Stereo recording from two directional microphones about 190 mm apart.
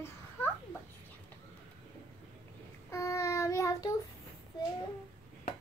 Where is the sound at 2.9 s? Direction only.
15° left (ahead or behind).